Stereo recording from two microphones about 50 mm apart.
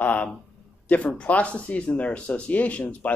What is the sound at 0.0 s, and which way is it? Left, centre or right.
A man's voice, left.